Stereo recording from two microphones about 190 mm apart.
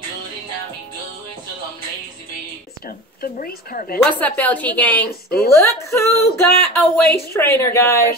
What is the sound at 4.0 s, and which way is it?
A woman's voice, 5° left (ahead or behind).